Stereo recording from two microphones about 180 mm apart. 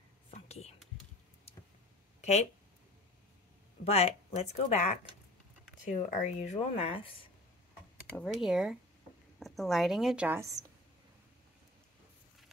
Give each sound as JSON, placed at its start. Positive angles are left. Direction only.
{"t": 0.3, "sound": "whispering", "side_deg": 35}
{"t": 3.8, "sound": "speech", "side_deg": 35}
{"t": 8.2, "sound": "a woman's voice", "side_deg": 0}